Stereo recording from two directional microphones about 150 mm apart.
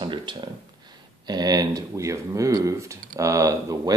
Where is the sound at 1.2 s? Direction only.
25° right (ahead or behind).